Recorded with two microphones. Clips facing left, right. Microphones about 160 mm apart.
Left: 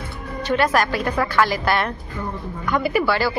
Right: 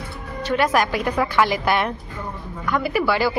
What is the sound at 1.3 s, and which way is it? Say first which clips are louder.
Speech: even; 20° right (ahead or behind).